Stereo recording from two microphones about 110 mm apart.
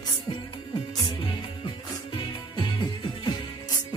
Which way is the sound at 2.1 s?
50° left (ahead or behind).